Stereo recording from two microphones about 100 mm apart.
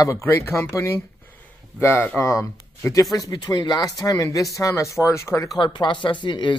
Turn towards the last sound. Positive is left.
turn(degrees=50)  # may be behind; listen again after turning